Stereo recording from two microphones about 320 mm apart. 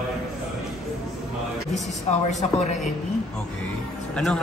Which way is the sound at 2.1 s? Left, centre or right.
Centre.